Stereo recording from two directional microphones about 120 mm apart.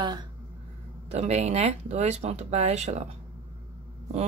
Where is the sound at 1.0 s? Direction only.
70° right (ahead or behind).